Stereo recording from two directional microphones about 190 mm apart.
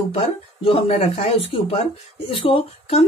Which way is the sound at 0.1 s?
30° left (ahead or behind).